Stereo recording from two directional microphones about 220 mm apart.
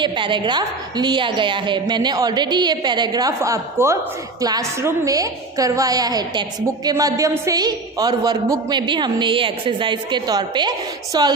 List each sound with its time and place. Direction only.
0.0 s a woman's voice: 20° right (ahead or behind)